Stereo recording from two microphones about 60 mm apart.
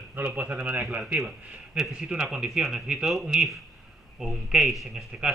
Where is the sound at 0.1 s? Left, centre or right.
Right; by 3.1 s centre.